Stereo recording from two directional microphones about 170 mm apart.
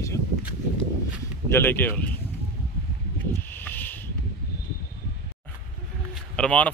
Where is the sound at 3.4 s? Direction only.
10° left (ahead or behind).